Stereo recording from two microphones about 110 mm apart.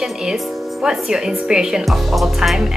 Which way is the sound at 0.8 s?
5° right (ahead or behind).